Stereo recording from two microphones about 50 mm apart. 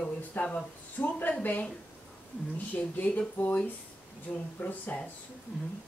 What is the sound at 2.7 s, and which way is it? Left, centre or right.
Speech, left.